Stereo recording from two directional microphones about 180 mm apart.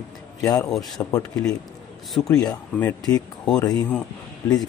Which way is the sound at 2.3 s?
20° left (ahead or behind).